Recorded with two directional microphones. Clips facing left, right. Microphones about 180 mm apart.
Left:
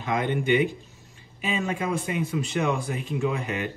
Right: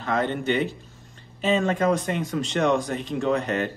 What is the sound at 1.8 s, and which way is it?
Speech, 40° right (ahead or behind).